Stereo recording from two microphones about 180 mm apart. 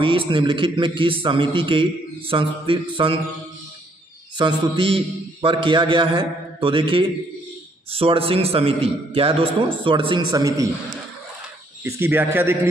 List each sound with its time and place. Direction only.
0.0 s a man's voice: 30° right (ahead or behind)
4.4 s a man's voice: 25° right (ahead or behind)
11.8 s speech: 10° right (ahead or behind)